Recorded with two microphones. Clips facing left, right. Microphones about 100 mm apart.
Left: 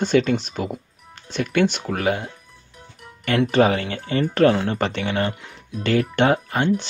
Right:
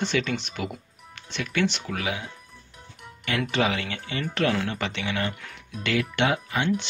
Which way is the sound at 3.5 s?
40° left (ahead or behind).